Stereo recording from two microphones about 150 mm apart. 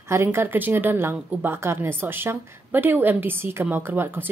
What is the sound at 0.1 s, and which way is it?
A woman's voice, 15° right (ahead or behind).